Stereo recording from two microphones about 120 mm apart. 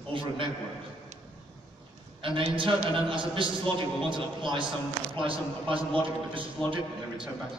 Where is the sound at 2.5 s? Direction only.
45° right (ahead or behind).